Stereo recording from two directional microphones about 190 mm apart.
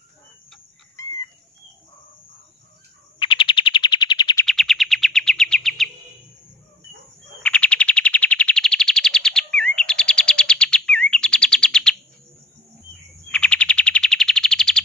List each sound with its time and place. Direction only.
0.9 s chicken: 15° left (ahead or behind)
3.2 s bird: 25° left (ahead or behind)
4.5 s bird: centre (ahead or behind)
7.4 s a sound: 5° left (ahead or behind)
13.3 s bird: 5° left (ahead or behind)